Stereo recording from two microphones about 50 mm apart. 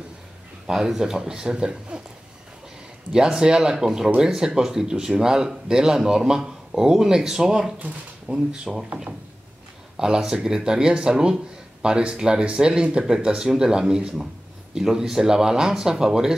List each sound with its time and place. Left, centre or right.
0.7 s speech: centre
3.1 s speech: centre
8.3 s speech: right
8.7 s speech: centre
9.9 s speech: centre